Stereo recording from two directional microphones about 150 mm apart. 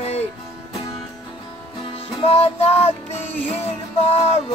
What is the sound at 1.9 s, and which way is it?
Music, 40° left (ahead or behind).